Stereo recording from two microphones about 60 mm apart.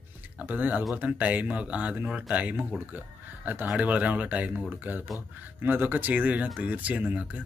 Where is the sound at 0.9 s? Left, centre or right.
Right.